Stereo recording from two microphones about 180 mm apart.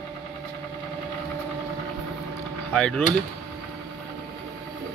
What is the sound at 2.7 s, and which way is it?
Speech, 5° left (ahead or behind).